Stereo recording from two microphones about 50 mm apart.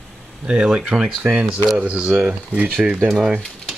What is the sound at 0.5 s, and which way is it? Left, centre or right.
Speech, centre.